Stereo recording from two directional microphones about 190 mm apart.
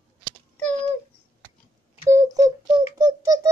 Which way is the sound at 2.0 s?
15° right (ahead or behind).